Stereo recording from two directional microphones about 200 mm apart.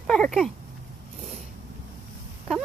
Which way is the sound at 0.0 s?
Centre (ahead or behind).